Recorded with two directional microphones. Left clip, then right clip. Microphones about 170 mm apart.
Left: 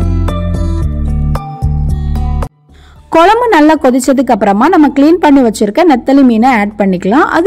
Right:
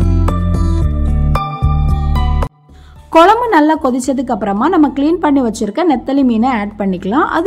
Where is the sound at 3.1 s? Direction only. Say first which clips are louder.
Left 2 dB; 35° left (ahead or behind).